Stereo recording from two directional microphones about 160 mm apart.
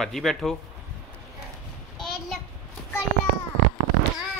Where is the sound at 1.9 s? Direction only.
Centre (ahead or behind).